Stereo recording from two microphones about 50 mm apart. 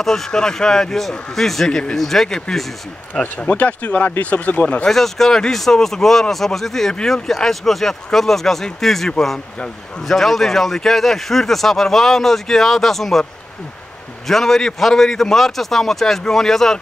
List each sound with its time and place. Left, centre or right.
0.0 s speech: centre
3.2 s speech: left
4.8 s speech: centre
7.0 s speech: centre
7.2 s speech: centre
14.2 s speech: centre